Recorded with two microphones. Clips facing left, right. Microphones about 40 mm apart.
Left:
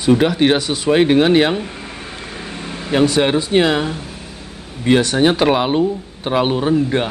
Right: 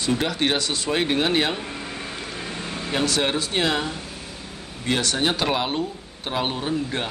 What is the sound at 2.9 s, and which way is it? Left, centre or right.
Speech, left.